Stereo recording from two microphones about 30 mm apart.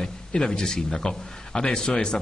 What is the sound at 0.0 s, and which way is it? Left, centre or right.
A man's voice, left.